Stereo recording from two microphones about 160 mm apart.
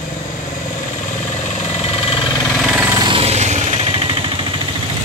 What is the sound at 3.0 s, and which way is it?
Vehicle, 35° right (ahead or behind).